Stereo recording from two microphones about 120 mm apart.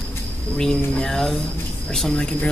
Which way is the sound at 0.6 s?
5° left (ahead or behind).